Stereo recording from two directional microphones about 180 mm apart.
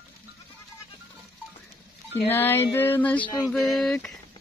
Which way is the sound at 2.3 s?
10° left (ahead or behind).